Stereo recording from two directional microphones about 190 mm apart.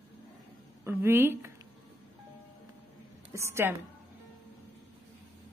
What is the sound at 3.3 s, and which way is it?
Speech, 15° right (ahead or behind).